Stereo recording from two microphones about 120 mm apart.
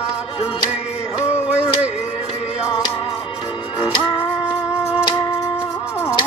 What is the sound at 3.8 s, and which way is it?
Music, 40° left (ahead or behind).